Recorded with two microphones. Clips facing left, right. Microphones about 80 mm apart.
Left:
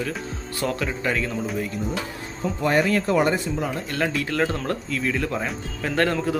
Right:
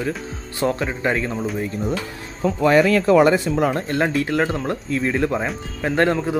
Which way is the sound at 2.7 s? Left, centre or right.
Right.